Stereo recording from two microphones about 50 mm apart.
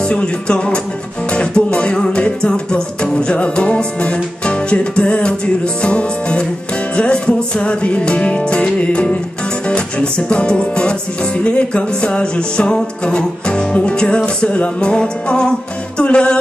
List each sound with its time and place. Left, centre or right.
0.0 s music: centre